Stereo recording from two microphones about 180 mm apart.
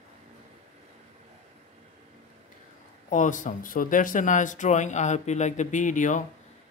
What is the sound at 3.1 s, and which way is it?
Speech, 45° left (ahead or behind).